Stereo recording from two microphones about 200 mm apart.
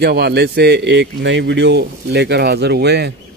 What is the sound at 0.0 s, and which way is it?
Speech, 55° right (ahead or behind).